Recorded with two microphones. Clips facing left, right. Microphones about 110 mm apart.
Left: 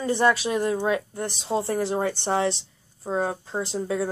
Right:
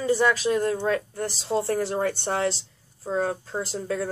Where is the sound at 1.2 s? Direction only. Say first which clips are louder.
Right 1 dB; centre (ahead or behind).